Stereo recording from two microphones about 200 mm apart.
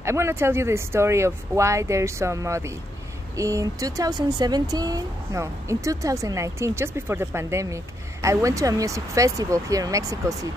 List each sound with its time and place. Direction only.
0.0 s speech: 15° right (ahead or behind)